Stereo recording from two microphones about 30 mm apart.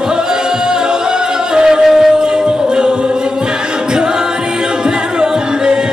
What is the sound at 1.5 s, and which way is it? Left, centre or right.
Music, right.